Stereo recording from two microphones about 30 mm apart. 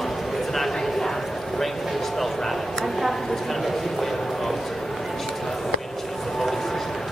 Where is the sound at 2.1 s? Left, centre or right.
Centre.